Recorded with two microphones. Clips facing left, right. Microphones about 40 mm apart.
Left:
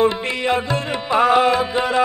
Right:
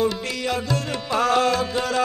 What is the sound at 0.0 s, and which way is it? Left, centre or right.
Music, left.